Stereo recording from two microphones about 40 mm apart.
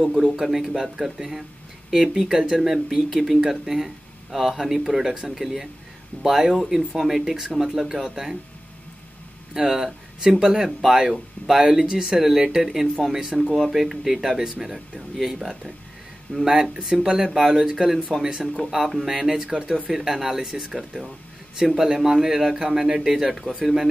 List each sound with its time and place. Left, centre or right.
0.0 s speech: centre
9.7 s speech: centre
12.2 s speech: centre
16.3 s speech: left
16.8 s speech: centre
19.9 s speech: centre